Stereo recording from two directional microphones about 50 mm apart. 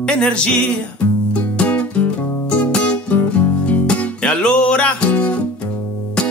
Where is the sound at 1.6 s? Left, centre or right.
Left.